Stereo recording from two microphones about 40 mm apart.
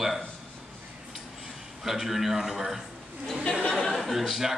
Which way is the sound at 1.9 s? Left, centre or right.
Centre.